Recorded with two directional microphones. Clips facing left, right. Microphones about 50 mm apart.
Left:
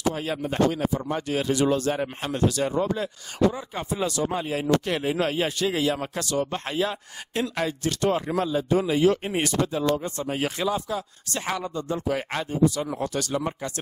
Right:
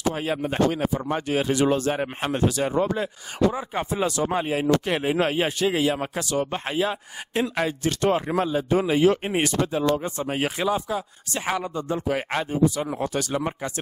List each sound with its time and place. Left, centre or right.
0.1 s a man's voice: right